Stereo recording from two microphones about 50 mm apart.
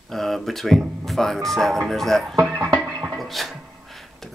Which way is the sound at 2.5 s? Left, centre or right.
Right.